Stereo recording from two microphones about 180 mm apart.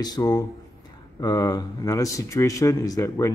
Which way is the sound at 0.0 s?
20° left (ahead or behind).